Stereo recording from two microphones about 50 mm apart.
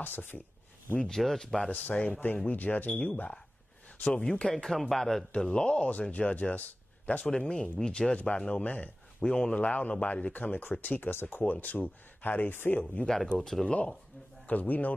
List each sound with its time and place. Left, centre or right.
0.0 s speech: left
1.0 s speech: centre
2.1 s a man's voice: left; by 5.2 s centre
5.3 s a man's voice: centre
6.3 s speech: left
7.2 s a man's voice: centre
9.6 s speech: left
13.0 s speech: centre
13.7 s a man's voice: left
14.5 s speech: left